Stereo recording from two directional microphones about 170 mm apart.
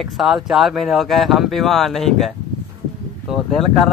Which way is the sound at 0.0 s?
Centre (ahead or behind).